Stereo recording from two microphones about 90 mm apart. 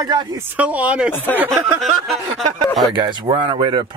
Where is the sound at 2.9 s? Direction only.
55° right (ahead or behind).